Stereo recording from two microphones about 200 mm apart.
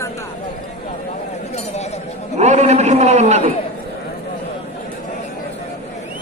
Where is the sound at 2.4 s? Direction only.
35° right (ahead or behind).